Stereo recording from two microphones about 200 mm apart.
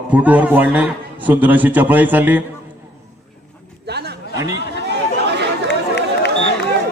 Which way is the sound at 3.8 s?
55° right (ahead or behind).